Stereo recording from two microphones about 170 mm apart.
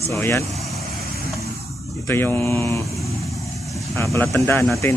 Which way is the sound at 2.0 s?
15° left (ahead or behind).